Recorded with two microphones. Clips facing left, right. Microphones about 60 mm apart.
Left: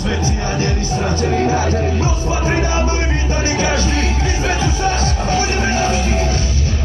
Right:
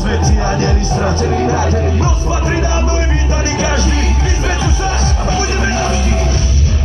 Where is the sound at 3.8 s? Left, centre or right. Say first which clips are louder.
Right 1 dB; left.